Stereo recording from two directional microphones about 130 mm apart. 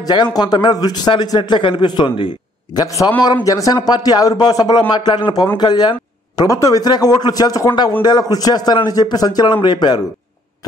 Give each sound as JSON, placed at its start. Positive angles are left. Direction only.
{"t": 0.0, "sound": "a man's voice", "side_deg": 35}